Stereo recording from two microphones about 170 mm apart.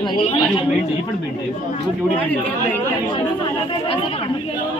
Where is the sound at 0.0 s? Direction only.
30° left (ahead or behind).